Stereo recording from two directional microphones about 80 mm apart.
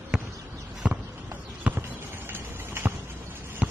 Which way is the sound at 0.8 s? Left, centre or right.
Centre.